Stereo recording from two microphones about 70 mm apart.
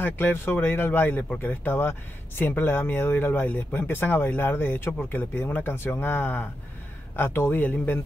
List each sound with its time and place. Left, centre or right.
0.0 s speech: left